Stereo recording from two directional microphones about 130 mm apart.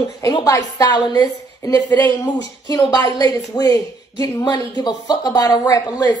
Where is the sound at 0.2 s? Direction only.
25° left (ahead or behind).